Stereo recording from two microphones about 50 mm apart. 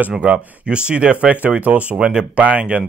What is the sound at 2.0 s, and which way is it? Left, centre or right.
Speech, centre.